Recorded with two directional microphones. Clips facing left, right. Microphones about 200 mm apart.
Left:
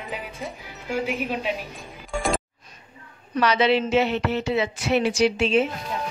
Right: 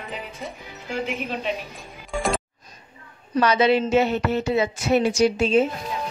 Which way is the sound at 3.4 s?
45° right (ahead or behind).